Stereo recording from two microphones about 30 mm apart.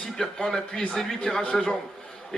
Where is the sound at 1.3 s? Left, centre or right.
Left.